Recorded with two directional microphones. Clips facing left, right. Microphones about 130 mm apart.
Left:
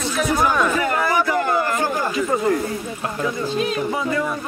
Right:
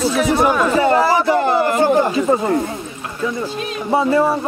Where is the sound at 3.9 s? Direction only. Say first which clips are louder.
Right 8 dB; 35° right (ahead or behind).